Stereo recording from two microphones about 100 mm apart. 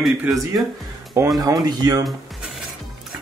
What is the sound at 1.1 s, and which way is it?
Speech, 35° right (ahead or behind).